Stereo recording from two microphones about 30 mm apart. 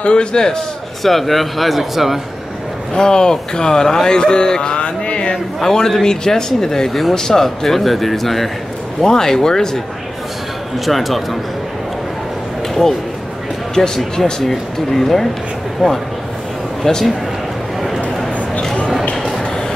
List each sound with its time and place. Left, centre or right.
0.0 s speech: left
1.0 s speech: centre
2.9 s speech: left
5.3 s speech: centre
6.9 s speech: centre
9.0 s speech: centre
10.9 s speech: centre
13.7 s speech: centre
14.4 s speech: centre
15.8 s speech: centre
16.8 s speech: centre